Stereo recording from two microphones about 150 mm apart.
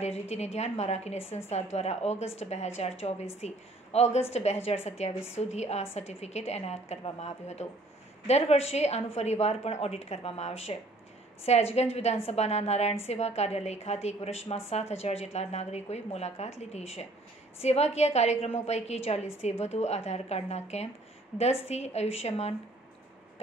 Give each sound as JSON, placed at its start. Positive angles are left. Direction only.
{"t": 0.0, "sound": "a woman's voice", "side_deg": 45}